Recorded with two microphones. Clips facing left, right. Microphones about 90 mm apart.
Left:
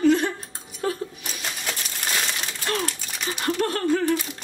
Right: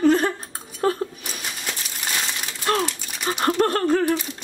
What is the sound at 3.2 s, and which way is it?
Speech, 50° right (ahead or behind).